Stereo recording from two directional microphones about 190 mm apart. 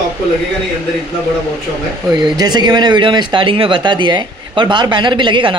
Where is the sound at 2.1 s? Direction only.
20° right (ahead or behind).